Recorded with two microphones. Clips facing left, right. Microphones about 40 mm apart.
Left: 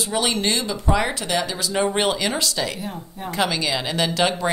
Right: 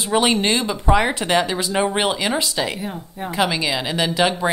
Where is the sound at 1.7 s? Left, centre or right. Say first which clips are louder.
Right 1 dB; centre.